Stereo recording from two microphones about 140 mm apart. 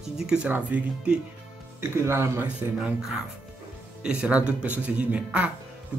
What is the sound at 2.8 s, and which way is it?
Speech, 5° right (ahead or behind).